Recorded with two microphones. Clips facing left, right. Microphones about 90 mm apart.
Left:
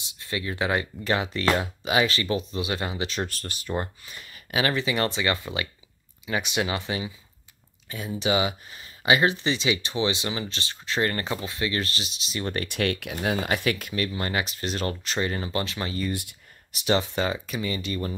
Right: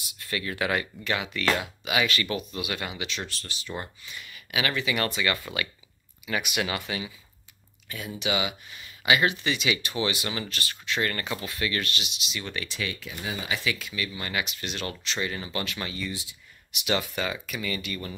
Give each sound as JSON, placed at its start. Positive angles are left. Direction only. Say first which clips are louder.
{"t": 0.0, "sound": "speech", "louder": "left 1 dB", "side_deg": 25}
{"t": 8.2, "sound": "speech", "louder": "left 4 dB", "side_deg": 35}
{"t": 12.6, "sound": "speech", "louder": "left 7 dB", "side_deg": 60}
{"t": 16.1, "sound": "speech", "louder": "left 6 dB", "side_deg": 55}
{"t": 16.7, "sound": "speech", "louder": "left 4 dB", "side_deg": 35}